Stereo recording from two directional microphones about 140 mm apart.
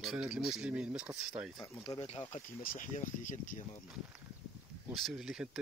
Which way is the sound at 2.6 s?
85° left.